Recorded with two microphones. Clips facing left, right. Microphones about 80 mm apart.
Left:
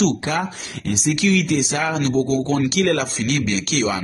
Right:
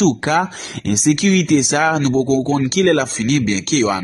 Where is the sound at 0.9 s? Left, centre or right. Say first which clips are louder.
Right 4 dB; right.